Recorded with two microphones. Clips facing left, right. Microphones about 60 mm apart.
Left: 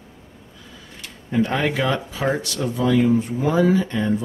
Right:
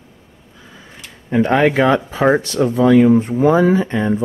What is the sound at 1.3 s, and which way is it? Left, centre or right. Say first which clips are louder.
Speech: right 7 dB; right.